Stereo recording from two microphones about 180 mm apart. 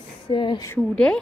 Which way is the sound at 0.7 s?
5° left (ahead or behind).